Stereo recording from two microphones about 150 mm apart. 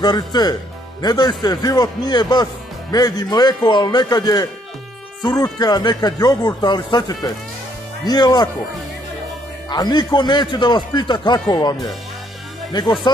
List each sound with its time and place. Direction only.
0.0 s a man's voice: 30° left (ahead or behind)
9.7 s a man's voice: 30° left (ahead or behind)
13.0 s speech: 25° left (ahead or behind)